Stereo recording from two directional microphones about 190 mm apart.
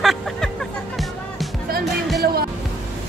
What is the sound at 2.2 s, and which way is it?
Speech, 55° right (ahead or behind).